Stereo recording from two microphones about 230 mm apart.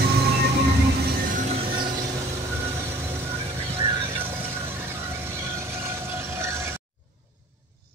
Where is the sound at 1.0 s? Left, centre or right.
Right.